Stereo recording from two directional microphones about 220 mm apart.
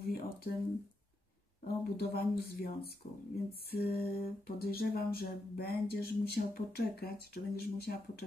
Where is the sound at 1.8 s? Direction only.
45° left (ahead or behind).